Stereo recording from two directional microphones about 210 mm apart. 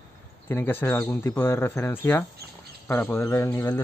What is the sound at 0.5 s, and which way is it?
Speech, 10° left (ahead or behind).